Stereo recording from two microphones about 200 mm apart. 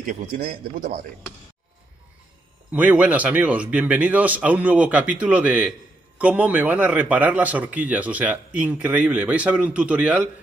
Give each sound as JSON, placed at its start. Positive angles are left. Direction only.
{"t": 0.0, "sound": "a man's voice", "side_deg": -40}
{"t": 2.7, "sound": "speech", "side_deg": -5}